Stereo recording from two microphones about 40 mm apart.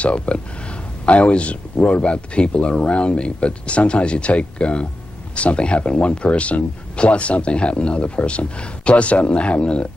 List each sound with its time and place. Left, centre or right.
0.0 s speech: left